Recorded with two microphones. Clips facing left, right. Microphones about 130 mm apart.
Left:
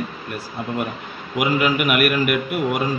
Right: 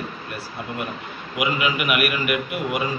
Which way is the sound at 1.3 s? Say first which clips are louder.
Left 4 dB; 50° left (ahead or behind).